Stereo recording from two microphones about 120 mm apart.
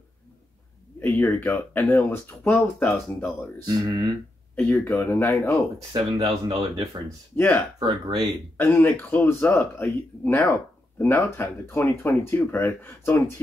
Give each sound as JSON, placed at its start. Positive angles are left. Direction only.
{"t": 0.9, "sound": "a sound", "side_deg": 15}
{"t": 1.3, "sound": "speech", "side_deg": 15}
{"t": 3.6, "sound": "speech", "side_deg": -35}
{"t": 4.6, "sound": "speech", "side_deg": 10}
{"t": 5.9, "sound": "speech", "side_deg": -35}
{"t": 6.8, "sound": "speech", "side_deg": -30}
{"t": 7.3, "sound": "speech", "side_deg": 20}
{"t": 7.8, "sound": "speech", "side_deg": -35}
{"t": 8.5, "sound": "speech", "side_deg": 15}